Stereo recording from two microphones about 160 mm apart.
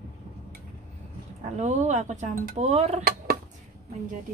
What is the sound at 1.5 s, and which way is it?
Speech, 45° right (ahead or behind).